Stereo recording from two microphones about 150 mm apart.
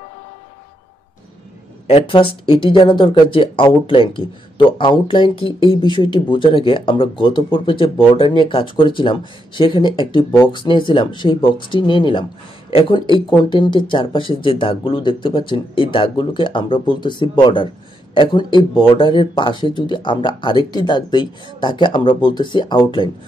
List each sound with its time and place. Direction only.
1.9 s speech: 35° left (ahead or behind)